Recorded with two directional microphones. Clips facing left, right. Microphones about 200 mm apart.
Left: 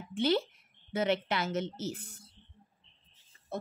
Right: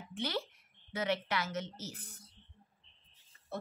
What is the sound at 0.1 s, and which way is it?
A woman's voice, 25° left (ahead or behind).